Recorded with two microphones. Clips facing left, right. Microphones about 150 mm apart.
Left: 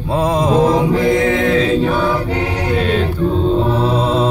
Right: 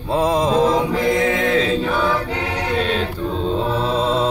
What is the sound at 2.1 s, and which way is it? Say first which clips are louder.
Choir: left 4 dB; 30° left (ahead or behind).